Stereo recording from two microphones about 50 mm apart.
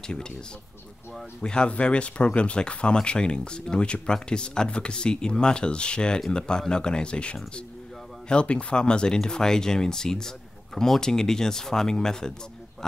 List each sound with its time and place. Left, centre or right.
0.0 s speech: centre
1.4 s speech: centre